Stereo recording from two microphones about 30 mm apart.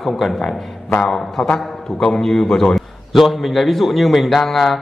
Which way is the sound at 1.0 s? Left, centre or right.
Centre.